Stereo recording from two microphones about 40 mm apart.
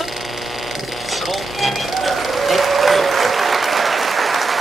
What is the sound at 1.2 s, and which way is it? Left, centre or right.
Applause, centre.